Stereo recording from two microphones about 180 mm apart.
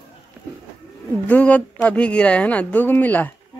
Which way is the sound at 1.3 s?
10° left (ahead or behind).